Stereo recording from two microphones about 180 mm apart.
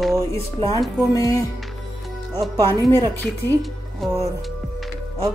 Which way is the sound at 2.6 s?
15° left (ahead or behind).